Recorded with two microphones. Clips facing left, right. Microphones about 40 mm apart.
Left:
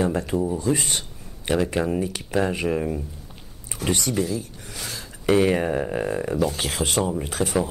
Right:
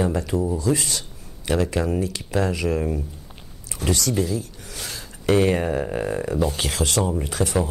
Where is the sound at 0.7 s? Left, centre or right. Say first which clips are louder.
Left 1 dB; left.